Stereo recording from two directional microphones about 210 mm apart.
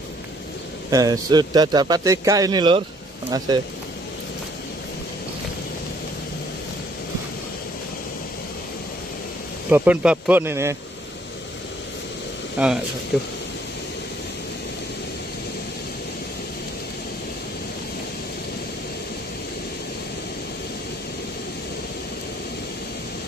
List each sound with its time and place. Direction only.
0.8 s speech: 15° right (ahead or behind)
9.7 s speech: 10° right (ahead or behind)
12.6 s speech: 5° right (ahead or behind)